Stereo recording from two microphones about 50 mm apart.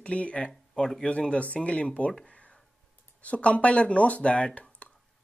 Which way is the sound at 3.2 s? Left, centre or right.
Left.